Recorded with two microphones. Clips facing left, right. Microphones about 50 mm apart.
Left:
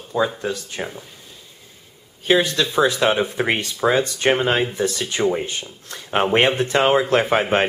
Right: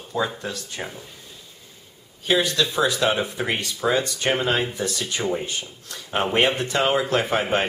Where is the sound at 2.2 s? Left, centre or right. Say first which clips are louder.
Left 3 dB; left.